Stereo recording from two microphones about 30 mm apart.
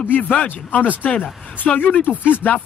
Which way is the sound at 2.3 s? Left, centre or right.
Left.